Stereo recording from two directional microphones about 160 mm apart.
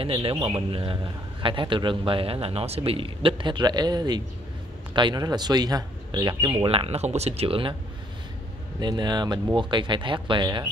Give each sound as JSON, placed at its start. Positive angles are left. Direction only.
{"t": 0.0, "sound": "speech", "side_deg": -35}
{"t": 8.7, "sound": "speech", "side_deg": -25}